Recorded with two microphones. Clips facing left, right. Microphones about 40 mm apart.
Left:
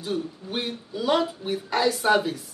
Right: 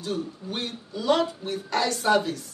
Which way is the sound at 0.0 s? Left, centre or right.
Centre.